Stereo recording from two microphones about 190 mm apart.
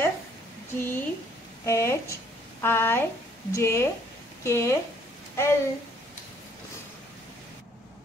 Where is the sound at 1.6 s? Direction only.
15° left (ahead or behind).